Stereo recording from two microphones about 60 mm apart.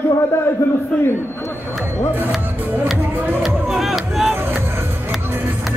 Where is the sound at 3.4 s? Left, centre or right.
Centre.